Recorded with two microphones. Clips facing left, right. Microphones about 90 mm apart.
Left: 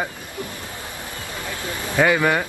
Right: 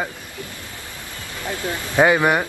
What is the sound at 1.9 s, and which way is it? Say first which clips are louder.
Speech: right 2 dB; 20° right (ahead or behind).